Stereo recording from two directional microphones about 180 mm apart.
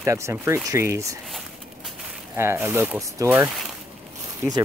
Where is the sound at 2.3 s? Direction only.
15° right (ahead or behind).